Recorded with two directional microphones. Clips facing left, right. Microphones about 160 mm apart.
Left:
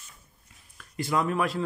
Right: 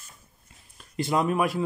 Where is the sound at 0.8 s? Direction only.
25° right (ahead or behind).